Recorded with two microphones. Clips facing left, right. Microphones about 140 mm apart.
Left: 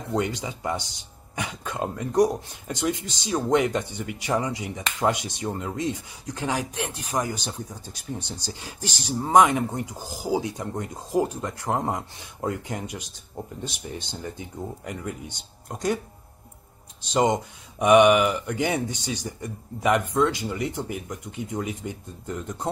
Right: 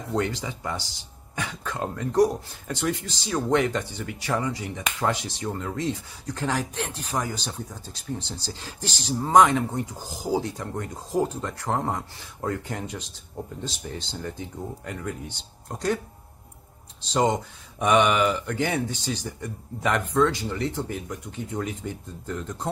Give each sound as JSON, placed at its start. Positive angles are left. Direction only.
{"t": 0.1, "sound": "speech", "side_deg": 15}
{"t": 17.1, "sound": "speech", "side_deg": 10}